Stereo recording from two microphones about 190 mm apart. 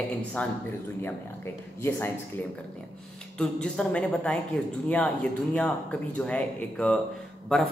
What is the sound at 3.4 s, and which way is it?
Speech, 5° left (ahead or behind).